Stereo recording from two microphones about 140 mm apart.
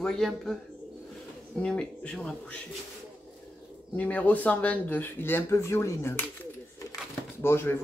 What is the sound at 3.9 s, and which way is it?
Speech, 10° left (ahead or behind).